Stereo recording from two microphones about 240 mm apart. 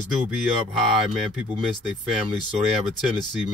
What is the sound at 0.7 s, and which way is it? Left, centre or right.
Speech, centre.